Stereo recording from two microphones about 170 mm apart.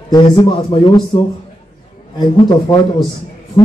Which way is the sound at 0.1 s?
25° left (ahead or behind).